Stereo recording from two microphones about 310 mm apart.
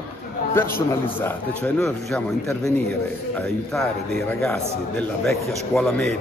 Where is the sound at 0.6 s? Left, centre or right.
Centre.